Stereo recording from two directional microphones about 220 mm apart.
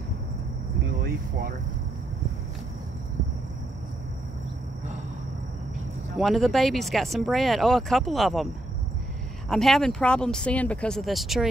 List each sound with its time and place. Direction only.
6.1 s speech: centre (ahead or behind)
9.5 s speech: centre (ahead or behind)